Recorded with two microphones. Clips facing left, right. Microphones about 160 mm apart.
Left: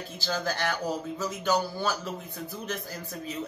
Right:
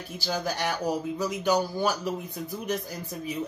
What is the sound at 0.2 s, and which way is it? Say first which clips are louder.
Speech: right 1 dB; 10° right (ahead or behind).